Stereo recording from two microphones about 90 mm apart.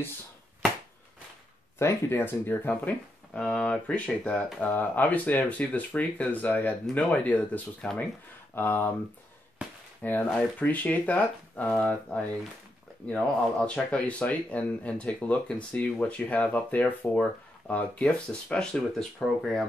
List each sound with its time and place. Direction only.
1.8 s speech: 30° left (ahead or behind)
9.6 s chop: 15° right (ahead or behind)
10.0 s speech: 15° left (ahead or behind)